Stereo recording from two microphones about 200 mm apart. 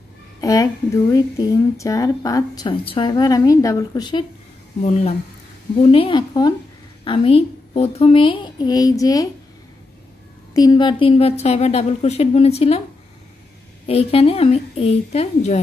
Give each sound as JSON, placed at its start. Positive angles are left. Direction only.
{"t": 0.4, "sound": "speech", "side_deg": 15}
{"t": 4.8, "sound": "a woman's voice", "side_deg": 35}
{"t": 10.5, "sound": "a woman's voice", "side_deg": 20}
{"t": 13.8, "sound": "a woman's voice", "side_deg": 30}